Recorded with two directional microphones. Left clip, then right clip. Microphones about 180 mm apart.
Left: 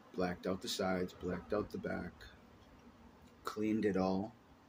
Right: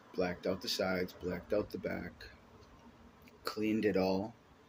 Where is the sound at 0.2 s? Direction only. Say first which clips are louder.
Right 3 dB; 15° left (ahead or behind).